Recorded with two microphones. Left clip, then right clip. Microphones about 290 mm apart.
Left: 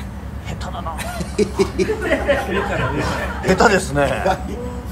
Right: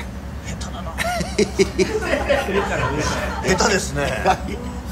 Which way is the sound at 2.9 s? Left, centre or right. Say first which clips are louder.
Even; centre.